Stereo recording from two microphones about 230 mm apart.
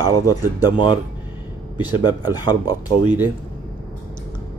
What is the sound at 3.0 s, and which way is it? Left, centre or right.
Speech, centre.